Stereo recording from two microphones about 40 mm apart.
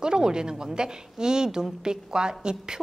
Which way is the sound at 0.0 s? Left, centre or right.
Centre.